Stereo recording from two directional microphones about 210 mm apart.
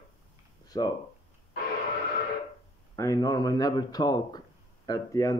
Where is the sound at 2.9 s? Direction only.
15° left (ahead or behind).